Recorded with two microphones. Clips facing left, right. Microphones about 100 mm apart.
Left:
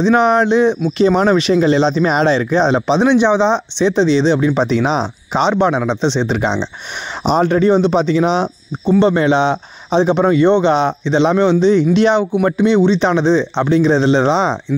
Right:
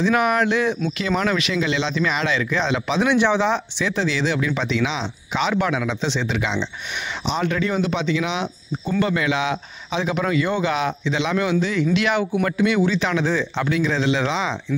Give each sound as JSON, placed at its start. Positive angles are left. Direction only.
{"t": 0.0, "sound": "speech", "side_deg": 25}